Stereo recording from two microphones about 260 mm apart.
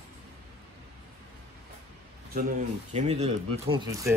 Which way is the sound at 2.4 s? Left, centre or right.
Right.